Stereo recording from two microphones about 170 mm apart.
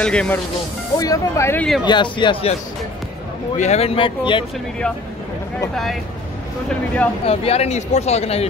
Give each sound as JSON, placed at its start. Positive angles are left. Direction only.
{"t": 0.0, "sound": "speech", "side_deg": 5}
{"t": 0.9, "sound": "speech", "side_deg": 20}
{"t": 1.9, "sound": "a man's voice", "side_deg": 25}
{"t": 3.5, "sound": "speech", "side_deg": 40}
{"t": 7.2, "sound": "speech", "side_deg": 35}